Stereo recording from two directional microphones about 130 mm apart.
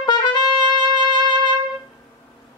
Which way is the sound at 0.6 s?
35° right (ahead or behind).